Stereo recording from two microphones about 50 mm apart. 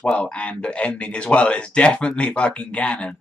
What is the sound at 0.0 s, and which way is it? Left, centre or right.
Speech, left.